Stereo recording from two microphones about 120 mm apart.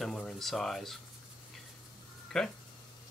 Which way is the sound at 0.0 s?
5° left (ahead or behind).